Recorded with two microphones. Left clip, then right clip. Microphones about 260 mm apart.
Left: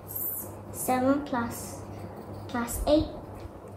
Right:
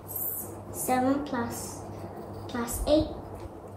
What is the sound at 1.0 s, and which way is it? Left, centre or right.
Speech, centre.